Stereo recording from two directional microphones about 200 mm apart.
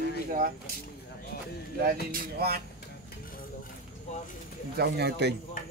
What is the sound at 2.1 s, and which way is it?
Speech, 50° right (ahead or behind).